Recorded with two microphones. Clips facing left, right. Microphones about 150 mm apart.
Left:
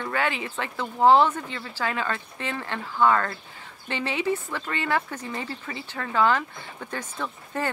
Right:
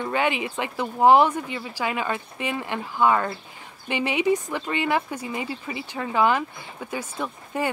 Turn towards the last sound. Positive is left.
turn(degrees=-15)  # may be behind; listen again after turning